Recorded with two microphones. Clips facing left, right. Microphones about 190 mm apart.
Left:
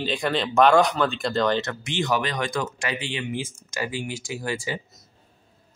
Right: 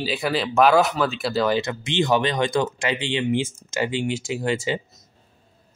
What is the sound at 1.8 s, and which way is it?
Speech, 25° right (ahead or behind).